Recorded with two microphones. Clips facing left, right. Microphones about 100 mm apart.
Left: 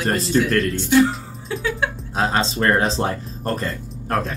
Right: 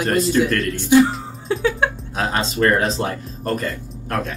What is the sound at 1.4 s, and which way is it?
Music, 35° right (ahead or behind).